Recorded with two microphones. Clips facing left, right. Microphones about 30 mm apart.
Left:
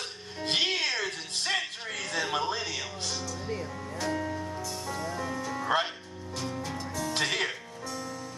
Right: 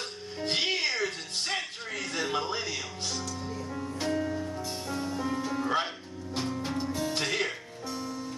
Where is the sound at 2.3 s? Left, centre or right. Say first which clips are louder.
Left 1 dB; left.